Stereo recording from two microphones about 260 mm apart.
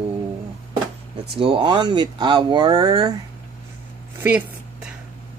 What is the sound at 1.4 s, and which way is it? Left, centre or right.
Speech, centre.